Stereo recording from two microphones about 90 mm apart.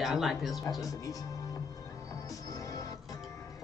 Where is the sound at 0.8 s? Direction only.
40° left (ahead or behind).